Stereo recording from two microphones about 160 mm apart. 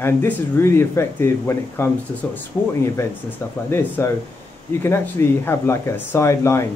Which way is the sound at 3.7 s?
15° left (ahead or behind).